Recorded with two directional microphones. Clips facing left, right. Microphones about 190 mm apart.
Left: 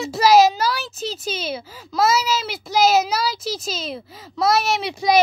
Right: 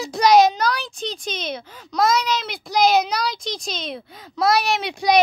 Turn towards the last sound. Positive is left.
turn(degrees=0)  # may be behind; listen again after turning